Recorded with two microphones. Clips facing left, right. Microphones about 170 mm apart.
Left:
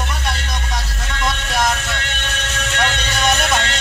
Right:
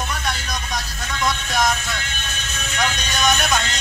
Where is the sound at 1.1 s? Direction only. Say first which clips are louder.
Left 1 dB; 75° left (ahead or behind).